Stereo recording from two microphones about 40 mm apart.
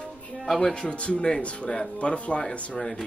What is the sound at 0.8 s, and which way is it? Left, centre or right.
Speech, left.